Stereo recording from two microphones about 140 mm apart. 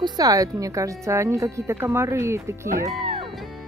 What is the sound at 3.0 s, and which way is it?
Music, 40° right (ahead or behind).